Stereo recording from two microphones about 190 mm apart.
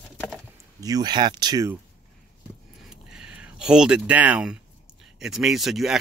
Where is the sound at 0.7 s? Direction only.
20° right (ahead or behind).